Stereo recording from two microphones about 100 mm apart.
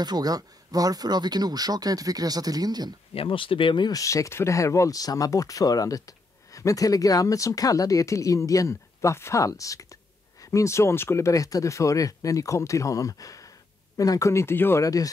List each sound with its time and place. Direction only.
0.0 s speech: 40° right (ahead or behind)
3.2 s speech: 60° left (ahead or behind)
3.9 s speech: 30° left (ahead or behind)